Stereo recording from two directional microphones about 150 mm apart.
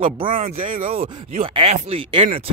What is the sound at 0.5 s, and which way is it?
Speech, 65° right (ahead or behind).